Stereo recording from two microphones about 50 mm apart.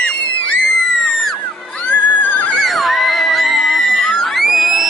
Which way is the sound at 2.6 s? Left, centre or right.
Centre.